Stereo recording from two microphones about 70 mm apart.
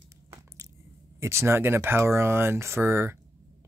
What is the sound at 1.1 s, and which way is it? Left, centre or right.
Speech, right.